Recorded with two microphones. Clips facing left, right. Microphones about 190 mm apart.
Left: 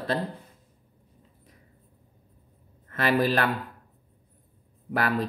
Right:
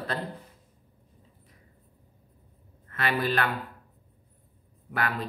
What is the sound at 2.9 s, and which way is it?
Speech, 40° left (ahead or behind).